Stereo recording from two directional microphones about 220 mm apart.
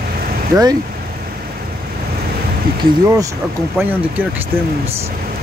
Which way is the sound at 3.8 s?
10° right (ahead or behind).